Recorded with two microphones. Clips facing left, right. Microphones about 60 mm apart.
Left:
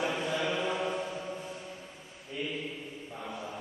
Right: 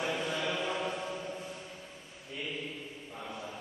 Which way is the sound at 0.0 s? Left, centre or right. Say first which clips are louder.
Left 2 dB; centre.